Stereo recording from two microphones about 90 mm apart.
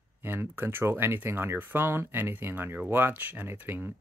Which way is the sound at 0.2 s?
25° right (ahead or behind).